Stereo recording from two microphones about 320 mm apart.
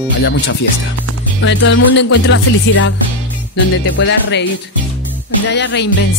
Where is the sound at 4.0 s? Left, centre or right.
Left.